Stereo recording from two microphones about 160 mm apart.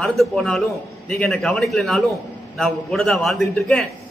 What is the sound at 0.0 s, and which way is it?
Speech, centre (ahead or behind).